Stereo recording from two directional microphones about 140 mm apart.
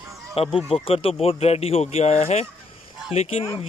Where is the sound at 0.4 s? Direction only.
45° left (ahead or behind).